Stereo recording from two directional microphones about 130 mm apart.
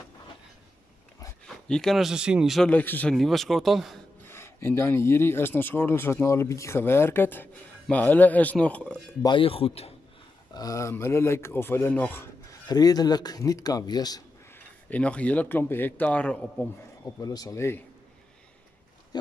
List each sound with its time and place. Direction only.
1.4 s speech: 5° left (ahead or behind)
2.7 s a man's voice: 15° left (ahead or behind)
3.2 s speech: centre (ahead or behind)
4.3 s a man's voice: 20° left (ahead or behind)
9.2 s speech: 40° left (ahead or behind)
10.5 s speech: 25° left (ahead or behind)
12.6 s speech: 30° left (ahead or behind)
14.5 s speech: 10° left (ahead or behind)
17.2 s speech: 30° left (ahead or behind)